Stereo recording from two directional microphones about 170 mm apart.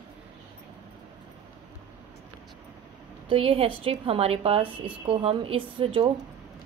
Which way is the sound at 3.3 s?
35° right (ahead or behind).